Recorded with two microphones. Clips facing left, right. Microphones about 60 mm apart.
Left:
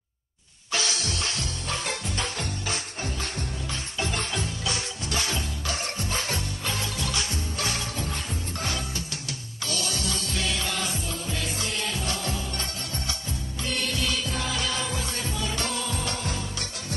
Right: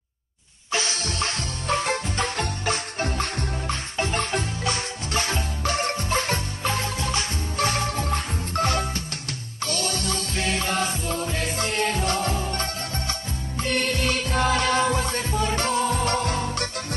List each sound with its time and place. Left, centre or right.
0.7 s music: right
4.0 s music: right